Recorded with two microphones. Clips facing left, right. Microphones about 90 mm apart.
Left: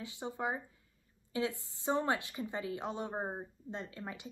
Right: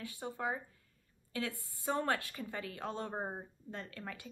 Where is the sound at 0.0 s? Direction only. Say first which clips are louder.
Left 1 dB; 20° left (ahead or behind).